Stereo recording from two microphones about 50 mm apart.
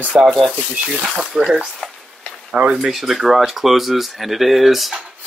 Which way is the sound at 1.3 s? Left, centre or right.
Centre.